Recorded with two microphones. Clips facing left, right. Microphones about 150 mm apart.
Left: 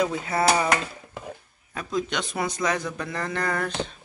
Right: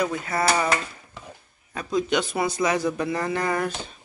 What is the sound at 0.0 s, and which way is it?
Speech, 20° left (ahead or behind).